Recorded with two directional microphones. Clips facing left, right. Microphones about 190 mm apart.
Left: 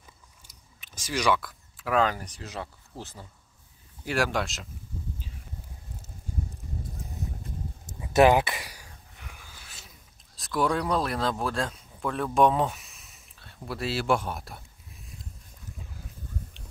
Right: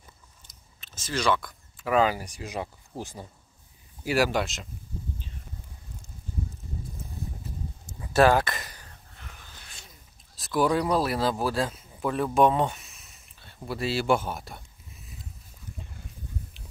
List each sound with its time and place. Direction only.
0.5 s chewing: 15° left (ahead or behind)
1.4 s speech: centre (ahead or behind)
8.0 s a sound: 20° left (ahead or behind); by 15.2 s 5° right (ahead or behind)